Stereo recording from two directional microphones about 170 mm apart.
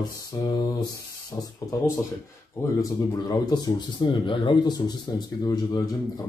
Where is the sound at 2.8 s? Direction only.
25° left (ahead or behind).